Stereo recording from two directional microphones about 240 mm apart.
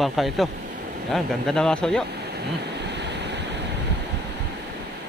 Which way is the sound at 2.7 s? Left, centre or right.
Right.